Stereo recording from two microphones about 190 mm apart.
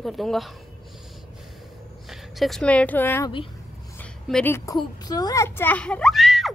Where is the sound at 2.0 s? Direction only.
Centre (ahead or behind).